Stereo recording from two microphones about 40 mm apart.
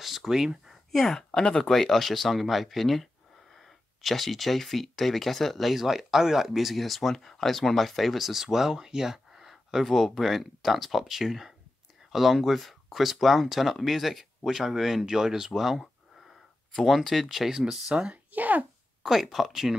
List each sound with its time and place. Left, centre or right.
0.0 s a sound: centre
0.9 s speech: centre
16.7 s speech: centre
18.1 s speech: right
19.0 s speech: right